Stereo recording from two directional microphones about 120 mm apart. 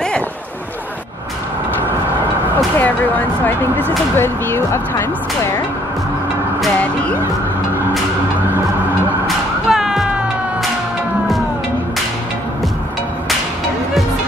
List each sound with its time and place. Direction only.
2.8 s speech: 15° left (ahead or behind)
9.7 s music: 5° right (ahead or behind)